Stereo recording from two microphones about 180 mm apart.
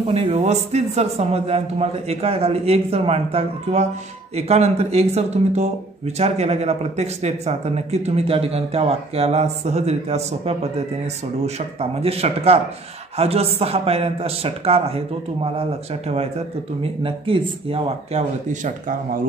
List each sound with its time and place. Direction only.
0.0 s speech: 35° right (ahead or behind)
17.0 s speech: 30° right (ahead or behind)